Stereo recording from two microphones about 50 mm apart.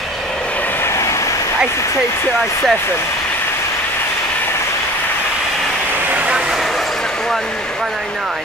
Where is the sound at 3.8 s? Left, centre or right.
Left.